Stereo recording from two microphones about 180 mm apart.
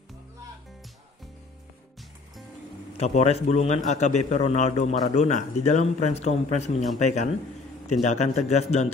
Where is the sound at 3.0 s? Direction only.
35° left (ahead or behind).